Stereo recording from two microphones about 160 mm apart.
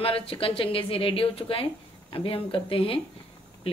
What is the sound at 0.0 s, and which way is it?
A woman's voice, 35° left (ahead or behind).